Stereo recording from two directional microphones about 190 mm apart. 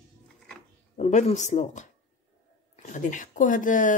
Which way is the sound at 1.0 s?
40° left (ahead or behind).